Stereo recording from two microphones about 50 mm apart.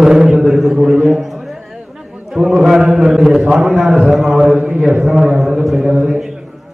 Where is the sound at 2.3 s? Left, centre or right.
Centre.